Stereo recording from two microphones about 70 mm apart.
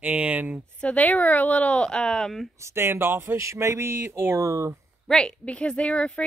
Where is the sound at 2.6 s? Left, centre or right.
Right.